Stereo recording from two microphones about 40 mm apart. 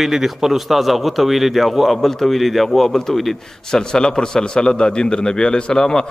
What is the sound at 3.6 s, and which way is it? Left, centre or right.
A man's voice, centre.